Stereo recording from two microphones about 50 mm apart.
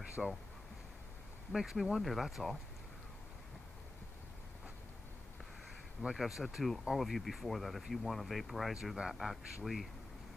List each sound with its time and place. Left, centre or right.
0.2 s speech: centre
1.5 s speech: centre
6.0 s speech: centre